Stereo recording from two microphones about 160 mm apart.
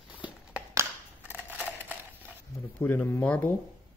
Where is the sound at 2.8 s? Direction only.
15° left (ahead or behind).